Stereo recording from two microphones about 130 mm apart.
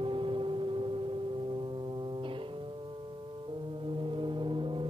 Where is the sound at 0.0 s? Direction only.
40° right (ahead or behind).